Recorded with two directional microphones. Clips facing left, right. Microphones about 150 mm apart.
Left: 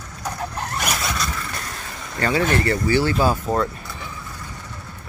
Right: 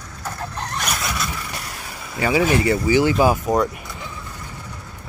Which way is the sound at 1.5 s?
10° right (ahead or behind).